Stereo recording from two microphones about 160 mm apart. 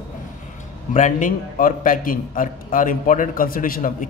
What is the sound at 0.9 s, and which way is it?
A man's voice, 55° left (ahead or behind).